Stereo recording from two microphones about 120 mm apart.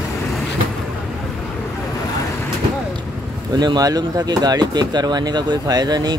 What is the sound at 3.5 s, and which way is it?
Speech, 35° right (ahead or behind).